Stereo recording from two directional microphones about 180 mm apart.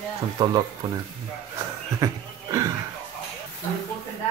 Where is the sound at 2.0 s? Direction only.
20° right (ahead or behind).